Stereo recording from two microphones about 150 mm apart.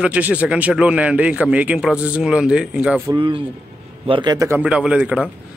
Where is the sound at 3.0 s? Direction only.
30° right (ahead or behind).